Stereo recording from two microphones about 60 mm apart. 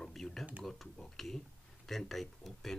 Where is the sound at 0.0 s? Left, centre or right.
Centre.